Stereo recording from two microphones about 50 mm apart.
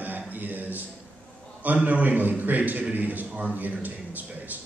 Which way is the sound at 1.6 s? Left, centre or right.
Right.